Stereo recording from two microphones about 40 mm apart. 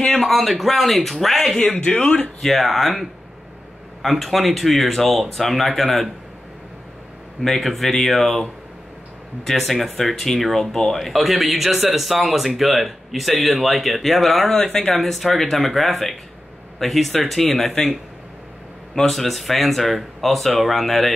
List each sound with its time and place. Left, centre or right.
0.2 s speech: centre
1.9 s speech: left
2.4 s speech: centre
7.4 s speech: centre
9.5 s speech: centre
14.5 s speech: centre
15.0 s speech: centre
18.9 s speech: centre